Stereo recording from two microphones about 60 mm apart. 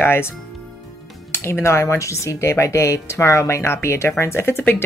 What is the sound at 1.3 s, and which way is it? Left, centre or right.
Speech, left.